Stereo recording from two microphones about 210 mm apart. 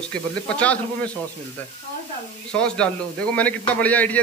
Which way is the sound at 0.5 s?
5° left (ahead or behind).